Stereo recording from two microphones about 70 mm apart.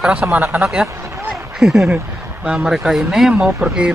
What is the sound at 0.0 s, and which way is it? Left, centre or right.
Speech, centre.